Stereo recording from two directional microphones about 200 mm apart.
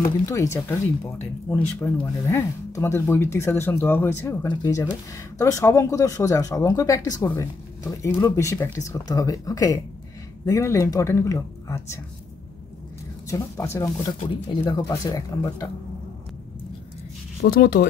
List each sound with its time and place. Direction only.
0.3 s speech: 15° left (ahead or behind)
13.3 s speech: 15° left (ahead or behind)
14.6 s speech: 20° left (ahead or behind)
17.5 s speech: 50° left (ahead or behind)